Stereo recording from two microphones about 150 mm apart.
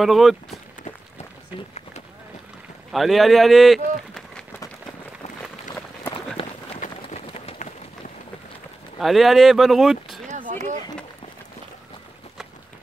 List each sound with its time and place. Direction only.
0.0 s speech: centre (ahead or behind)
2.9 s speech: centre (ahead or behind)
6.4 s run: 35° left (ahead or behind)
6.8 s a sound: 50° left (ahead or behind)
9.0 s speech: centre (ahead or behind)
10.2 s a sound: 55° right (ahead or behind)